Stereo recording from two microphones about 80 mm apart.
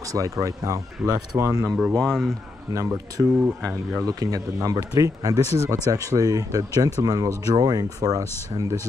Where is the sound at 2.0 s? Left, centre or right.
Centre.